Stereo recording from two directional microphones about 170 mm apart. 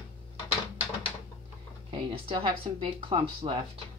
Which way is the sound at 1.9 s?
30° right (ahead or behind).